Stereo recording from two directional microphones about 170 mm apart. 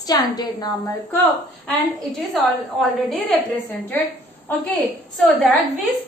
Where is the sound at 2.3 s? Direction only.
Centre (ahead or behind).